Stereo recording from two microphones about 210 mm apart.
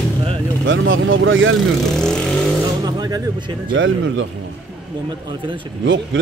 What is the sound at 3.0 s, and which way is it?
Speech, 20° right (ahead or behind).